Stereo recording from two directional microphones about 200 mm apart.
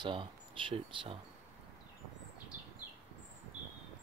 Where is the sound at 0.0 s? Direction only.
25° right (ahead or behind).